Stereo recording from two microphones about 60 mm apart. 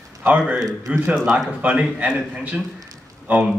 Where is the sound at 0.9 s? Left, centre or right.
Centre.